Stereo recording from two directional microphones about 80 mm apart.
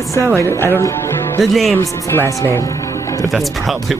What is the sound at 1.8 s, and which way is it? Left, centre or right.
Speech, left.